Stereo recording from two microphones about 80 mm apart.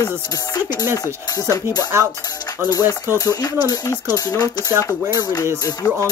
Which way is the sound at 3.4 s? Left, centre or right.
Left.